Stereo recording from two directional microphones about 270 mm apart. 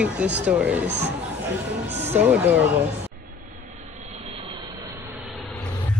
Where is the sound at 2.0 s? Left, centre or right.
Centre.